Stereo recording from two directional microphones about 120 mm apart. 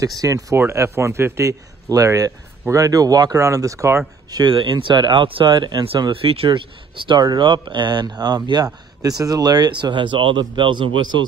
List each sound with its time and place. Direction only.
0.2 s a man's voice: 25° right (ahead or behind)
4.3 s speech: 40° right (ahead or behind)
6.2 s speech: 50° right (ahead or behind)